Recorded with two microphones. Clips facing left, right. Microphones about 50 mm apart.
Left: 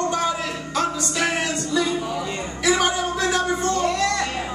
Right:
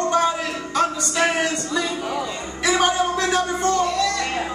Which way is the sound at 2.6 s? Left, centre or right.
Right.